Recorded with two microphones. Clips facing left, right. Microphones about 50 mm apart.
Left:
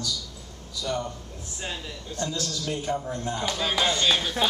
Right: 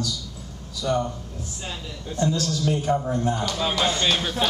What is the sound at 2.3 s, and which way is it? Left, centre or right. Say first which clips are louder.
Speech: right 6 dB; centre.